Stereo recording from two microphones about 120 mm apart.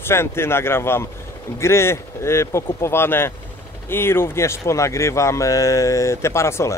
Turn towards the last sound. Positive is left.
turn(degrees=25)  # may be behind; listen again after turning